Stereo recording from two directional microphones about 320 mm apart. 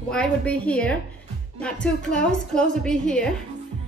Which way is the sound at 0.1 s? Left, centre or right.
Centre.